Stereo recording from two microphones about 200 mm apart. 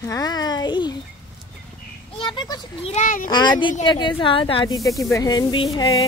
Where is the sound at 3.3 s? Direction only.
20° left (ahead or behind).